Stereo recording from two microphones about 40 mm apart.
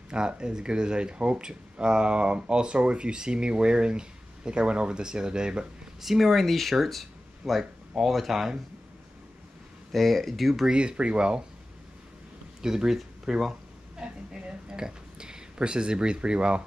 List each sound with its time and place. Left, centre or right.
0.1 s speech: right
6.0 s speech: centre
9.9 s speech: centre
10.7 s speech: right
12.6 s speech: centre
13.5 s a sound: right